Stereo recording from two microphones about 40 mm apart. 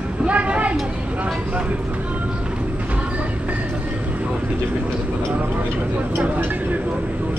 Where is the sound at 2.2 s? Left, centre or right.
Right.